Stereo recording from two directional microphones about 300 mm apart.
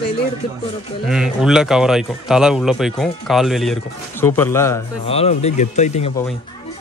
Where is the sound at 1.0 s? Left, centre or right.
Centre.